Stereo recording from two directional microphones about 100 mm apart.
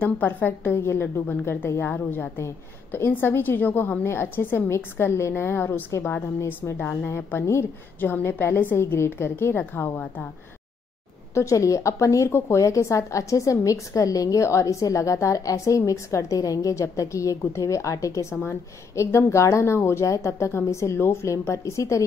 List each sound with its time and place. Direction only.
0.0 s a woman's voice: 15° left (ahead or behind)
11.3 s a woman's voice: 30° left (ahead or behind)
18.3 s a woman's voice: 25° left (ahead or behind)